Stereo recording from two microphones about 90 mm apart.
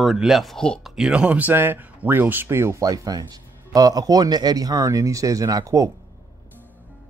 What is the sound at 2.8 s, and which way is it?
Speech, 45° right (ahead or behind).